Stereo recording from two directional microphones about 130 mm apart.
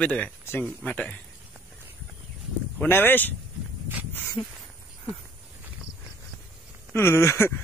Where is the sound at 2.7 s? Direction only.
15° left (ahead or behind).